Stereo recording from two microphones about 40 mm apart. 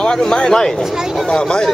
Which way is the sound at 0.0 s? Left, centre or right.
Centre.